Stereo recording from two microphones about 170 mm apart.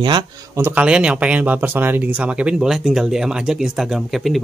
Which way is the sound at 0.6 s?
10° right (ahead or behind).